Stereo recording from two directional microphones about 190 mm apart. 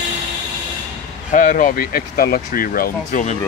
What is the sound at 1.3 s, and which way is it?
Speech, 45° left (ahead or behind).